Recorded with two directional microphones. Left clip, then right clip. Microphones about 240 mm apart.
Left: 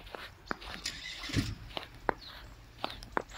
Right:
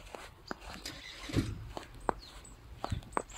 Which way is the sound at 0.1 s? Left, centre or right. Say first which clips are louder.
Left 3 dB; centre.